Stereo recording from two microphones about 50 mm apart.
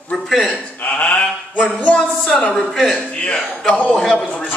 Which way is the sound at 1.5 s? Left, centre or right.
Left.